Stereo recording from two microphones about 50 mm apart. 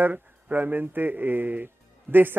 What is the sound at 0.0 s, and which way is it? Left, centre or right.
Speech, right.